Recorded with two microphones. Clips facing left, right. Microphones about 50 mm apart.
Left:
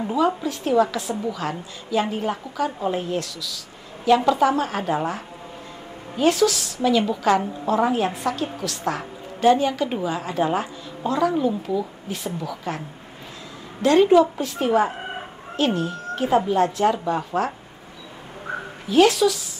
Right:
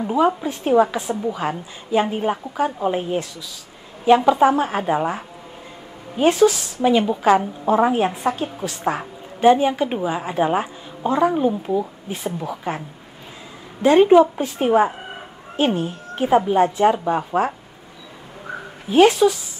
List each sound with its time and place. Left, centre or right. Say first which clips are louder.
0.4 s a woman's voice: right 3 dB; right
13.8 s a woman's voice: right 3 dB; right
18.9 s a woman's voice: right 3 dB; right